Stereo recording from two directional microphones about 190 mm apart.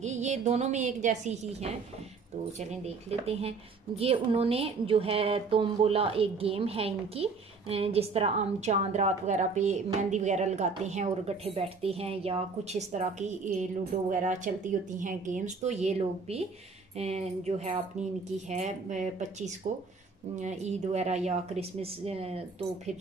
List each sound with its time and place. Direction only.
0.0 s a woman's voice: 35° right (ahead or behind)